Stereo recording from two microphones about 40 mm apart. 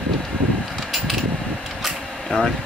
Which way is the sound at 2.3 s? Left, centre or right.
Centre.